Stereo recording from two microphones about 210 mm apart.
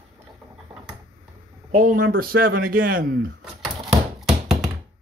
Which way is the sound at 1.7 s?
40° right (ahead or behind).